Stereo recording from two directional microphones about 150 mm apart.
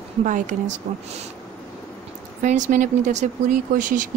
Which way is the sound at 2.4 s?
55° right (ahead or behind).